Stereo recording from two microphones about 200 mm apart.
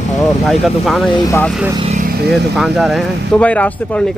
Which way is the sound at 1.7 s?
30° right (ahead or behind).